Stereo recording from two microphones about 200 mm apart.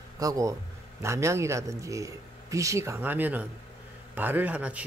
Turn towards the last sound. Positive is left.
turn(degrees=-5)  # may be behind; listen again after turning